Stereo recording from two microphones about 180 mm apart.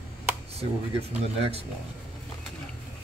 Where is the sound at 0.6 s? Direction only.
35° right (ahead or behind).